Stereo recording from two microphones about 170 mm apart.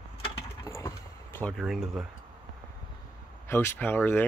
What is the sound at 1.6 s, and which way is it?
Speech, centre (ahead or behind).